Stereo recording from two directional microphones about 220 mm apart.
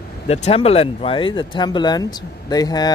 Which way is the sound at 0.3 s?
25° left (ahead or behind).